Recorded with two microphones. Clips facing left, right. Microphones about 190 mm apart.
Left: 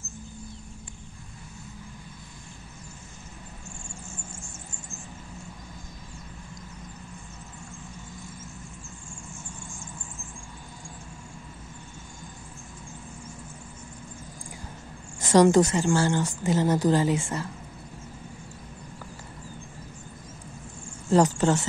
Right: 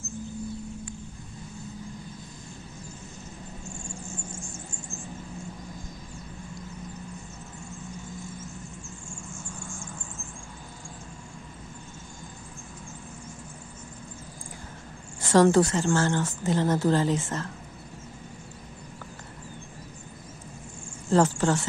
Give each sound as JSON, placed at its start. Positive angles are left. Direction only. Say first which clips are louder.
{"t": 15.1, "sound": "a woman's voice", "louder": "left 1 dB", "side_deg": 15}
{"t": 21.4, "sound": "speech", "louder": "left 2 dB", "side_deg": 20}